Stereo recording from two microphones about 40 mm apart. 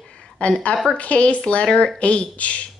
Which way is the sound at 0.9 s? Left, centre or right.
Left.